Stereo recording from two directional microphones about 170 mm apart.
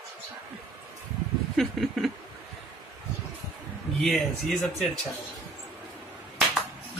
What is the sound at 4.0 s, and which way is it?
Speech, 5° left (ahead or behind).